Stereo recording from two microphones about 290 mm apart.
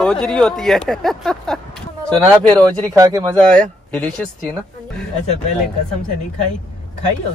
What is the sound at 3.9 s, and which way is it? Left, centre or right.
Speech, centre.